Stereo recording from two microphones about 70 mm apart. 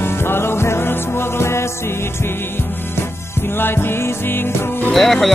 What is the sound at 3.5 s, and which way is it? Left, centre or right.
Music, left.